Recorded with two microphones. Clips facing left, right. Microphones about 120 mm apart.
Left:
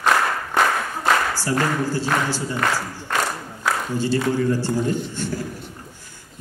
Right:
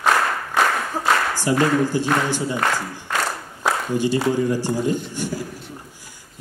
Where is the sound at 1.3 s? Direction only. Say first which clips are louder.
Right 4 dB; 15° right (ahead or behind).